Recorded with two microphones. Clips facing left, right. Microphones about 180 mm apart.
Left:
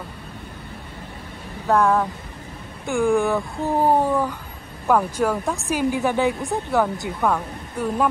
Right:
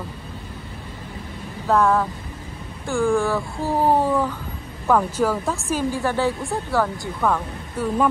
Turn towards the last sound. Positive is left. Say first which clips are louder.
# even
turn(degrees=15)  # may be behind; listen again after turning